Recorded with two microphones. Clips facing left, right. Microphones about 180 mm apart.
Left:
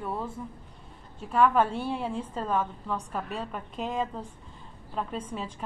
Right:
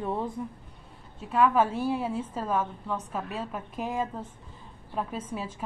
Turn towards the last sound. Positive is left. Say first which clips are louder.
# even
turn(degrees=-5)  # may be behind; listen again after turning